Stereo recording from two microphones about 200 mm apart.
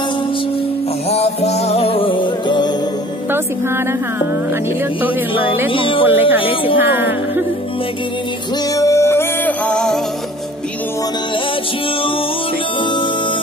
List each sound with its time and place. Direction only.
1.0 s music: 30° left (ahead or behind)
3.3 s music: 10° right (ahead or behind)
5.7 s speech: 25° left (ahead or behind)
6.0 s speech: 10° right (ahead or behind)
6.4 s speech: 25° left (ahead or behind)
6.8 s speech: 10° right (ahead or behind)
8.7 s music: 15° left (ahead or behind)
12.8 s music: 25° left (ahead or behind)